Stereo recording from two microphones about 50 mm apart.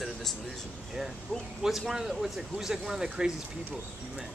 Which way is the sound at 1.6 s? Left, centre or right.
Centre.